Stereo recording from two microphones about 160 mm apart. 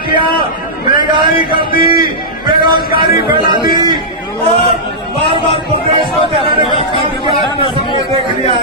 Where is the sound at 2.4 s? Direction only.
30° right (ahead or behind).